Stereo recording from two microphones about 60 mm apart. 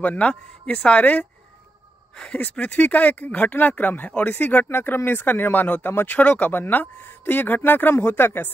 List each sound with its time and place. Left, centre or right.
0.0 s speech: left
4.6 s speech: left